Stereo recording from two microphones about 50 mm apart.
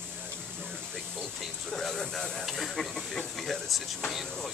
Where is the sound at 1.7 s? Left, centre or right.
Centre.